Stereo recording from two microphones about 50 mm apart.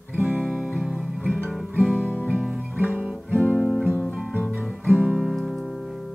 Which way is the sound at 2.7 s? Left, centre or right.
Right.